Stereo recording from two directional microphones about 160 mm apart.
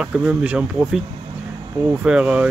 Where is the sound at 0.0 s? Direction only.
5° right (ahead or behind).